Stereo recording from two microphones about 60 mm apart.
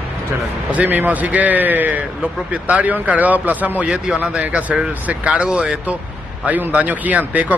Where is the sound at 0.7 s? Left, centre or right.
Right.